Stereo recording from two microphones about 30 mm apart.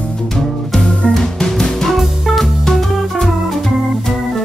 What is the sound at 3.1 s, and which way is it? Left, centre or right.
Organ, centre.